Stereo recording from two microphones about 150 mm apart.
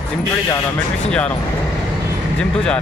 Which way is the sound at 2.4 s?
5° left (ahead or behind).